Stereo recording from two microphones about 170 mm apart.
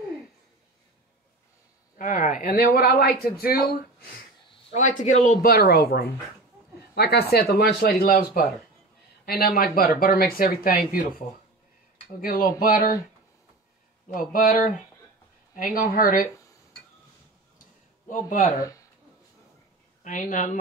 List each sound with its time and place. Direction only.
2.0 s speech: 50° left (ahead or behind); by 3.5 s 65° left (ahead or behind)
4.6 s speech: 45° left (ahead or behind)
14.0 s speech: 55° left (ahead or behind)
18.0 s speech: 50° left (ahead or behind)
20.0 s speech: 50° left (ahead or behind)